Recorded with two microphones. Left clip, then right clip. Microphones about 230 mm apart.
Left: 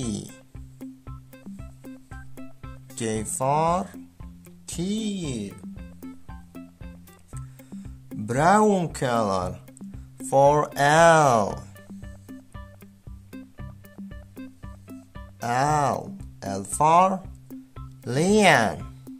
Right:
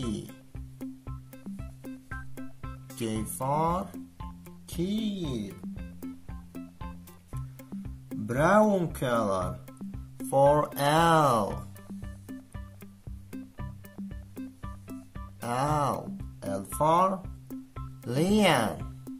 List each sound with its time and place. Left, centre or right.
0.3 s music: centre
3.0 s speech: left
4.6 s music: left
5.5 s music: centre
8.3 s speech: left
9.7 s music: centre
10.3 s speech: left
11.9 s music: centre
15.4 s music: left
17.5 s music: centre
18.0 s speech: left
19.1 s music: centre